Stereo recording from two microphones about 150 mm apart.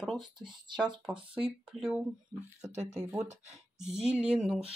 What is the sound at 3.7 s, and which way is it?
Speech, 5° right (ahead or behind).